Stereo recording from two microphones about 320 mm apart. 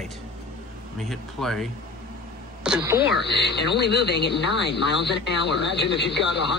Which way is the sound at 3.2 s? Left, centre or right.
Left.